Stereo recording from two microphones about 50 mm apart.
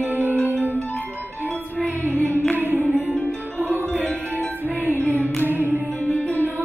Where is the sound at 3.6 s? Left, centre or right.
Right.